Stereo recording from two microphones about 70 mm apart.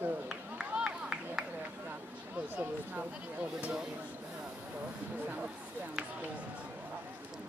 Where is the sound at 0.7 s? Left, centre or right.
Centre.